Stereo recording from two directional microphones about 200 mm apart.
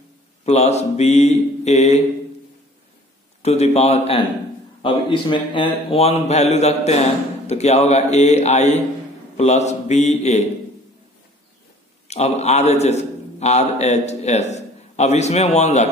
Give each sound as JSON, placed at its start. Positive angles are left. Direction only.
{"t": 0.5, "sound": "a man's voice", "side_deg": 35}
{"t": 3.4, "sound": "a man's voice", "side_deg": 30}
{"t": 12.1, "sound": "a man's voice", "side_deg": 35}